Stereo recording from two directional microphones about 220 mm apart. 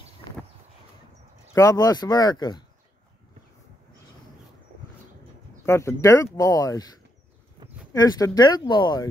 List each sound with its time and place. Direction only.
1.5 s speech: 15° left (ahead or behind)
5.7 s speech: 10° left (ahead or behind)
7.9 s speech: 15° left (ahead or behind)